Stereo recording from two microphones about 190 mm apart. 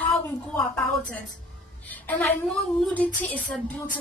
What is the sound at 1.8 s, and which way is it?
Speech, 10° left (ahead or behind).